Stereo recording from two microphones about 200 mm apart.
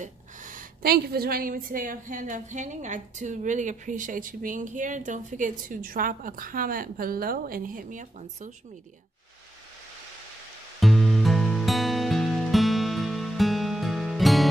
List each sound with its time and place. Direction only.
0.0 s a woman's voice: 40° right (ahead or behind)
10.8 s music: centre (ahead or behind)